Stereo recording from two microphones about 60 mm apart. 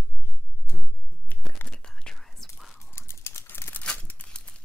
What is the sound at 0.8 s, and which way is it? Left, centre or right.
Finger snapping, left.